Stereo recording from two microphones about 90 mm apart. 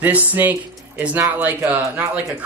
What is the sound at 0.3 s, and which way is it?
Speech, 20° right (ahead or behind).